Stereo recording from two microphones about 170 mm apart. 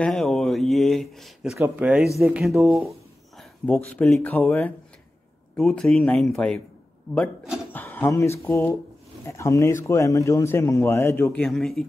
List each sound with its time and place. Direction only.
0.0 s speech: 5° left (ahead or behind)
7.7 s a sound: 10° left (ahead or behind)
8.5 s a man's voice: 15° left (ahead or behind)